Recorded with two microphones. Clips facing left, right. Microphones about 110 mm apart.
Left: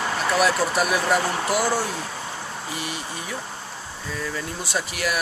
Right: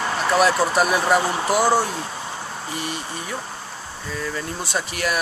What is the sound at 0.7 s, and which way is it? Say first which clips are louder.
Speech: right 3 dB; 40° right (ahead or behind).